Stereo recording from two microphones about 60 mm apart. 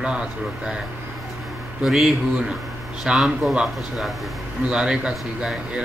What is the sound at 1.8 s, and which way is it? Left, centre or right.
A man's voice, centre.